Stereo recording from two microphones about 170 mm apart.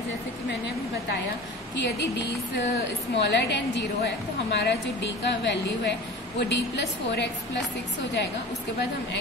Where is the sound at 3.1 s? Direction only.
90° left.